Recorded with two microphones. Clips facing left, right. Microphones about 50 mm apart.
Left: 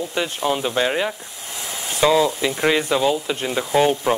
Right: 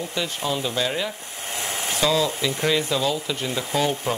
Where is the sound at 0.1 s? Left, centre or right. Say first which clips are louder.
Left 5 dB; left.